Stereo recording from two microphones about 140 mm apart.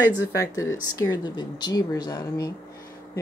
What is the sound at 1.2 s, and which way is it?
Speech, 30° left (ahead or behind).